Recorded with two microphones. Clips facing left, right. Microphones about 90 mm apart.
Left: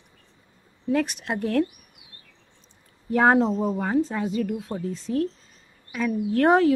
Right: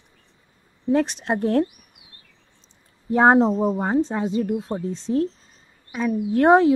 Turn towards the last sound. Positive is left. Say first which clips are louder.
# right 3 dB
turn(degrees=-20)  # may be behind; listen again after turning